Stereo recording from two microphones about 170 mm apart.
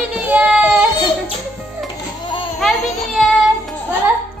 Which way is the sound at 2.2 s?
30° left (ahead or behind).